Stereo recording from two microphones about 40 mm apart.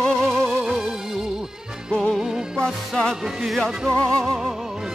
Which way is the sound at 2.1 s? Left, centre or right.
Centre.